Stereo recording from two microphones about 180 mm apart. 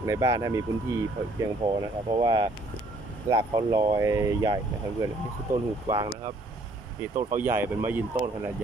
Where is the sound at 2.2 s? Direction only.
20° right (ahead or behind).